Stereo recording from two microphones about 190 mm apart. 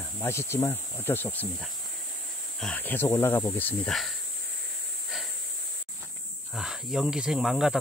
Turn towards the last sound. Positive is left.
turn(degrees=0)  # may be behind; listen again after turning